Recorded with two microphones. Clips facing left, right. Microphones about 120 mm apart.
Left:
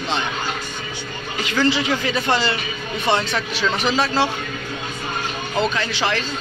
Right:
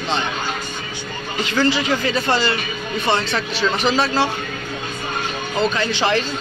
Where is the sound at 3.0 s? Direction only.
10° left (ahead or behind).